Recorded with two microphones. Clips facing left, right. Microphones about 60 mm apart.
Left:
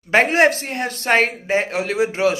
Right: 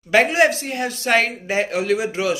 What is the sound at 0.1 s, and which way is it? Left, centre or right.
Speech, left.